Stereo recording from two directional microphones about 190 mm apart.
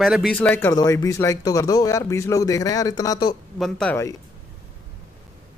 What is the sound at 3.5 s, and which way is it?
Speech, 5° left (ahead or behind).